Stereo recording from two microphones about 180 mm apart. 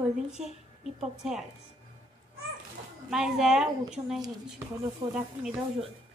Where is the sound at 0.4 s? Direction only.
40° right (ahead or behind).